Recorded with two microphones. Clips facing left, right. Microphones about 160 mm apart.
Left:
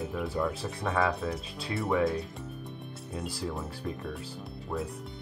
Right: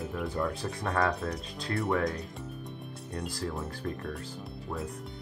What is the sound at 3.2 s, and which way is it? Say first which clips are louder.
Speech: even; 5° left (ahead or behind).